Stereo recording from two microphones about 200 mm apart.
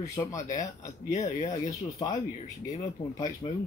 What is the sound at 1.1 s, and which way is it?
Speech, 35° left (ahead or behind).